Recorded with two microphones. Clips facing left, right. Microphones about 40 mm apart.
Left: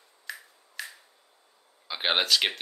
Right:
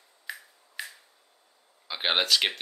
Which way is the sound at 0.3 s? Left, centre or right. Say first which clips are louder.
Right 1 dB; centre.